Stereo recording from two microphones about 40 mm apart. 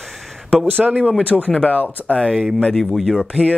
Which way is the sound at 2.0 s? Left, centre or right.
Centre.